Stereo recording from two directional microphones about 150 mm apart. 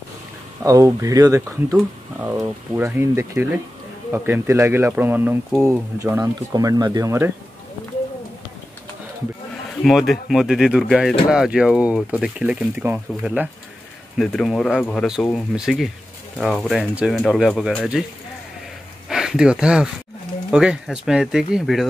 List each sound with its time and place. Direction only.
0.7 s speech: 20° right (ahead or behind)
9.8 s speech: centre (ahead or behind)